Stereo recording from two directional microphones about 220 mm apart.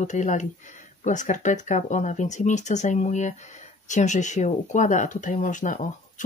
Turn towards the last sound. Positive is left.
turn(degrees=35)  # may be behind; listen again after turning